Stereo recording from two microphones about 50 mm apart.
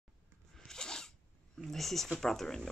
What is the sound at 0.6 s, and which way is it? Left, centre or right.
Zipper, centre.